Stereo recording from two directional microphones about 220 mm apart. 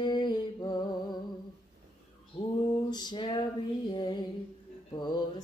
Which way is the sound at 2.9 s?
20° left (ahead or behind).